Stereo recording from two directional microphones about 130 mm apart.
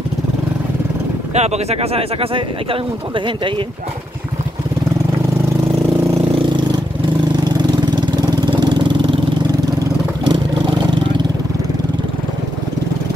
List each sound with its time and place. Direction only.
1.3 s speech: 55° right (ahead or behind); by 3.6 s 40° right (ahead or behind)
6.1 s vehicle: 40° right (ahead or behind)
8.0 s engine: 35° right (ahead or behind)